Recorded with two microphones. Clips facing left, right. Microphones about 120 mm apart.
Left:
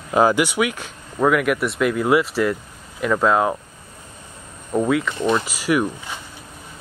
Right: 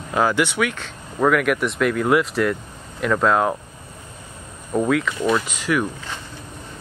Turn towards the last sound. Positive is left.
turn(degrees=10)  # may be behind; listen again after turning